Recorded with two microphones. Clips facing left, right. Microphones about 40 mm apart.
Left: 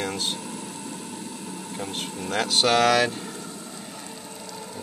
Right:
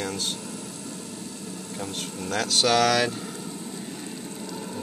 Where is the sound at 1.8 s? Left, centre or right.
Centre.